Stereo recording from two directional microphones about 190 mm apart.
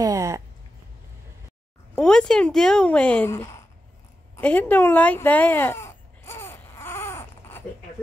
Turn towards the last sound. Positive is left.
turn(degrees=15)  # may be behind; listen again after turning